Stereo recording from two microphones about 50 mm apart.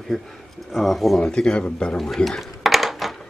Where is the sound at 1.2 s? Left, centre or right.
Centre.